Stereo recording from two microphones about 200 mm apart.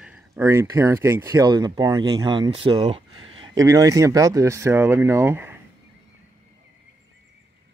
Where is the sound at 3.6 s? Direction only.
15° right (ahead or behind).